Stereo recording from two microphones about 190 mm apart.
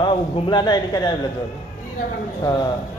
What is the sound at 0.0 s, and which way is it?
A man's voice, 25° left (ahead or behind).